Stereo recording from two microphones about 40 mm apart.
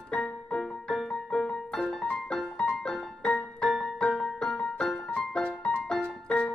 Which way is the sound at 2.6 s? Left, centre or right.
Left.